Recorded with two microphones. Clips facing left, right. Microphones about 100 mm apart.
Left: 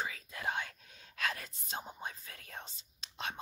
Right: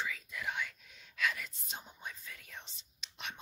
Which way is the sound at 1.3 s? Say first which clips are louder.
Left 3 dB; 45° left (ahead or behind).